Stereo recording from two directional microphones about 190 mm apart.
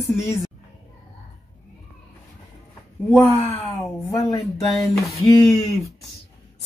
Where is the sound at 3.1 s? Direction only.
10° left (ahead or behind).